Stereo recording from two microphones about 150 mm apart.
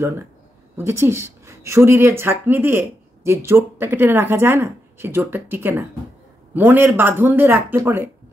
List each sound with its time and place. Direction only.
0.7 s speech: 15° right (ahead or behind)